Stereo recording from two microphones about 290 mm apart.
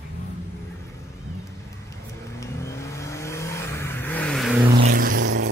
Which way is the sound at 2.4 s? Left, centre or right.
Centre.